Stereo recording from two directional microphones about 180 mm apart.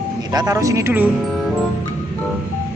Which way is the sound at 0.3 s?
20° right (ahead or behind).